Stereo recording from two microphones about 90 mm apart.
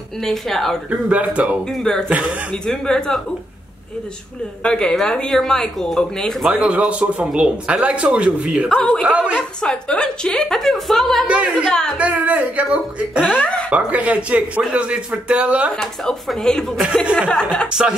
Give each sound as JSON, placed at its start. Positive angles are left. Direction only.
{"t": 0.2, "sound": "speech", "side_deg": 5}
{"t": 0.8, "sound": "speech", "side_deg": -15}
{"t": 1.8, "sound": "speech", "side_deg": 5}
{"t": 2.0, "sound": "speech", "side_deg": -15}
{"t": 2.6, "sound": "speech", "side_deg": 5}
{"t": 4.6, "sound": "speech", "side_deg": 10}
{"t": 6.5, "sound": "speech", "side_deg": -15}
{"t": 8.6, "sound": "speech", "side_deg": 5}
{"t": 9.0, "sound": "speech", "side_deg": -10}
{"t": 9.6, "sound": "speech", "side_deg": 10}
{"t": 11.2, "sound": "speech", "side_deg": -10}
{"t": 13.2, "sound": "speech", "side_deg": 15}
{"t": 13.7, "sound": "speech", "side_deg": -15}
{"t": 15.8, "sound": "speech", "side_deg": 5}